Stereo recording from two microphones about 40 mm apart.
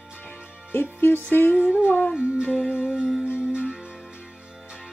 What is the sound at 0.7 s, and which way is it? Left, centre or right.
Music, left.